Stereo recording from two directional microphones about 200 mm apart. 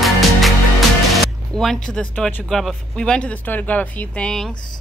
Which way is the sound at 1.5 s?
Centre (ahead or behind).